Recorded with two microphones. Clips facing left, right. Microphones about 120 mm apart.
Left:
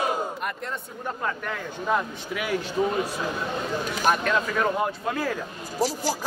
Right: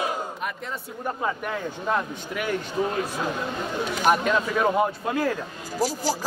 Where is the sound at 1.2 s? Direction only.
15° right (ahead or behind).